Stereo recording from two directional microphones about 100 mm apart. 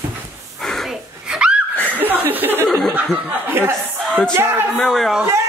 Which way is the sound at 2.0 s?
20° right (ahead or behind).